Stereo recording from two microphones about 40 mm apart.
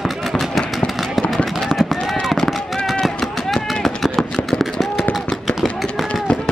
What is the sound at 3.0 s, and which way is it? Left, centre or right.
Run, centre.